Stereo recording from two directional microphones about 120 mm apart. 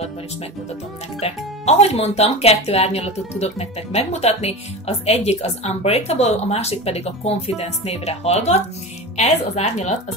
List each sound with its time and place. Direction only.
1.2 s speech: 60° left (ahead or behind)